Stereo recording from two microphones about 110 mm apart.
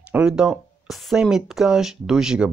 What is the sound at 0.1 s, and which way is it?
Speech, 5° right (ahead or behind).